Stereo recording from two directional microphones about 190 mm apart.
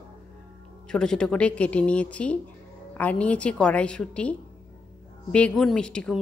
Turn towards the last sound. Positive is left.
turn(degrees=5)  # may be behind; listen again after turning